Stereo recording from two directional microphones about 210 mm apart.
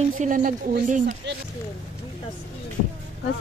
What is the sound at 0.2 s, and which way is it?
Speech, 40° right (ahead or behind).